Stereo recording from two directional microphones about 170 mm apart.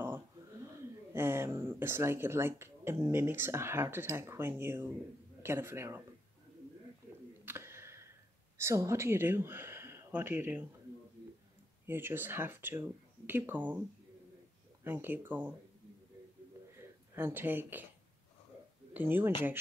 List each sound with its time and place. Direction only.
0.7 s speech: 15° right (ahead or behind)
7.4 s a sound: 15° right (ahead or behind)
8.5 s speech: 15° right (ahead or behind)
11.8 s speech: 15° right (ahead or behind)
14.8 s speech: 10° right (ahead or behind)
16.7 s a sound: 15° right (ahead or behind)
18.9 s speech: 10° right (ahead or behind)